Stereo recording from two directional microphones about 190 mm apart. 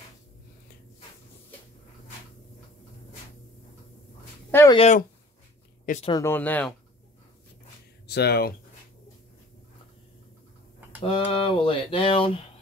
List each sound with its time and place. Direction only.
4.5 s speech: 15° left (ahead or behind)
4.7 s speech: 35° left (ahead or behind)
6.0 s speech: 15° left (ahead or behind)
8.1 s speech: 60° left (ahead or behind)
11.0 s speech: 25° left (ahead or behind)
11.2 s a sound: 30° left (ahead or behind)